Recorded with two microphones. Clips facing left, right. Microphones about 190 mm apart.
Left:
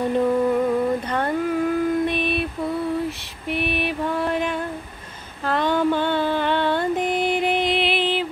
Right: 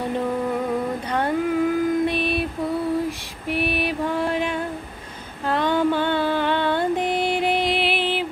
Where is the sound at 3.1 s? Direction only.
10° right (ahead or behind).